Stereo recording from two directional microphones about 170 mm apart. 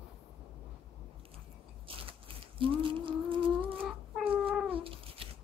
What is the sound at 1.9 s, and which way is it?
Biting, 30° right (ahead or behind).